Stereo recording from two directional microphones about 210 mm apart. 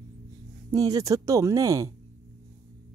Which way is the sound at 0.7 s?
15° right (ahead or behind).